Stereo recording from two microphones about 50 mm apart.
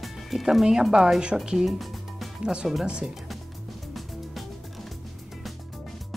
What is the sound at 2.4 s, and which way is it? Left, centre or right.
Speech, centre.